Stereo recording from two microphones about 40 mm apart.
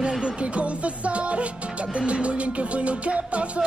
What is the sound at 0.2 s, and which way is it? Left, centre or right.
Music, right.